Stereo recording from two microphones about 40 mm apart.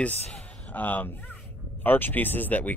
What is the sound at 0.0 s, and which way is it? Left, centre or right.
Speech, left.